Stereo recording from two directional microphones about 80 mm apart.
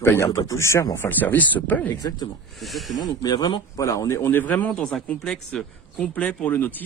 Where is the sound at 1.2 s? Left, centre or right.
Left.